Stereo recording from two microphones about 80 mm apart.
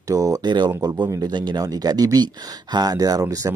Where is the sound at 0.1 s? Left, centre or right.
Right.